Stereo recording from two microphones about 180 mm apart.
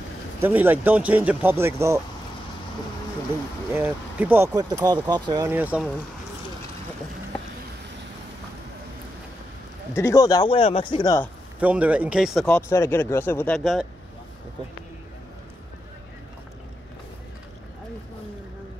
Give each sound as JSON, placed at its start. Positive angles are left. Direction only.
{"t": 0.4, "sound": "speech", "side_deg": -10}
{"t": 3.7, "sound": "speech", "side_deg": -10}
{"t": 5.5, "sound": "speech", "side_deg": -10}
{"t": 9.9, "sound": "speech", "side_deg": 15}
{"t": 11.6, "sound": "speech", "side_deg": -10}
{"t": 12.4, "sound": "speech", "side_deg": 10}